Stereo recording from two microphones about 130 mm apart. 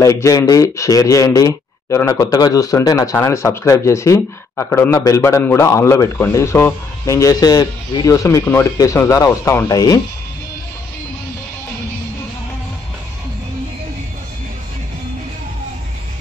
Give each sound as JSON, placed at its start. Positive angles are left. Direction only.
{"t": 0.0, "sound": "speech", "side_deg": 25}